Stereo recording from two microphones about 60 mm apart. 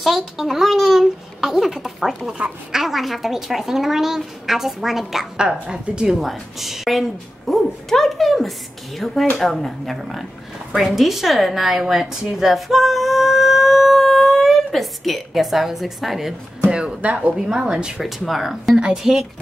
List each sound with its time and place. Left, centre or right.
0.0 s a woman's voice: centre
2.3 s a woman's voice: centre
2.8 s a woman's voice: centre
12.4 s singing: centre
16.7 s a woman's voice: centre
18.0 s a woman's voice: centre